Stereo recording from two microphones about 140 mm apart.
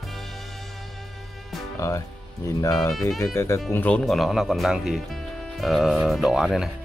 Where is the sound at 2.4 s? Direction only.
20° left (ahead or behind).